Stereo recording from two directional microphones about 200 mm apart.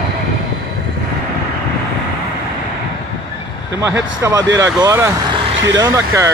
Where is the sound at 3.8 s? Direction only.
15° right (ahead or behind).